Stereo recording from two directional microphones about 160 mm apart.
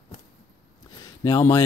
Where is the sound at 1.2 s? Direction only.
20° left (ahead or behind).